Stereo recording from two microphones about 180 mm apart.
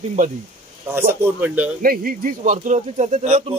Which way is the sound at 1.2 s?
10° right (ahead or behind).